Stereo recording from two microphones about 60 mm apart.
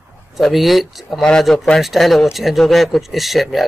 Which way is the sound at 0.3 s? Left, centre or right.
Centre.